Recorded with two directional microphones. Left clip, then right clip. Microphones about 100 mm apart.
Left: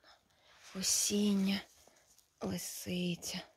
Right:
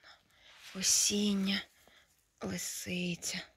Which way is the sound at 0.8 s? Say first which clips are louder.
Right 3 dB; 20° left (ahead or behind).